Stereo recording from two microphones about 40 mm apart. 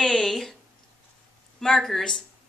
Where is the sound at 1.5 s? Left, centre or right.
Centre.